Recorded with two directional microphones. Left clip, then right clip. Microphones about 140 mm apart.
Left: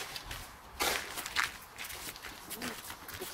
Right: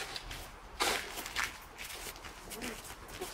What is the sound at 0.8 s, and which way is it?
Crushing, 15° left (ahead or behind).